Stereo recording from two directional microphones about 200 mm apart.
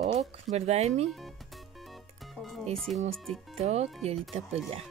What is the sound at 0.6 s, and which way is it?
Speech, 30° right (ahead or behind).